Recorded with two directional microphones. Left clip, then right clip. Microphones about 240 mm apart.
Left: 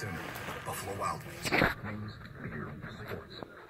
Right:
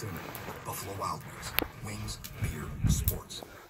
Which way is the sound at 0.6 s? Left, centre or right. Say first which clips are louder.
Even; right.